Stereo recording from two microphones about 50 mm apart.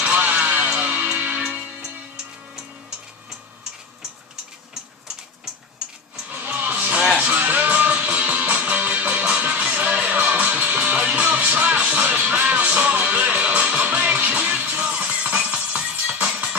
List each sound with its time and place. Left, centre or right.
0.0 s music: right
6.2 s music: right